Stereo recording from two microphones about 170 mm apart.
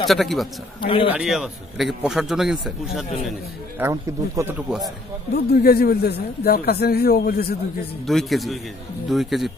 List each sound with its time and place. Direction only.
0.0 s a man's voice: centre (ahead or behind)
0.7 s a man's voice: 30° left (ahead or behind)
1.1 s a man's voice: centre (ahead or behind)
3.8 s speech: 20° right (ahead or behind)
4.6 s a man's voice: 5° right (ahead or behind)
5.3 s speech: 65° left (ahead or behind)
8.1 s a man's voice: centre (ahead or behind)